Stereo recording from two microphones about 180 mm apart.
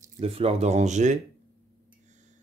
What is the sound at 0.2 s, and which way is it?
Speech, 35° right (ahead or behind).